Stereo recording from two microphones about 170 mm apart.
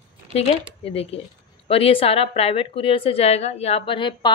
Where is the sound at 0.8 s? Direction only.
35° left (ahead or behind).